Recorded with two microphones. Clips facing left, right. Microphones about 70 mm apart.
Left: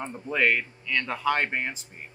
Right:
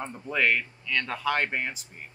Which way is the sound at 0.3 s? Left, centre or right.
Left.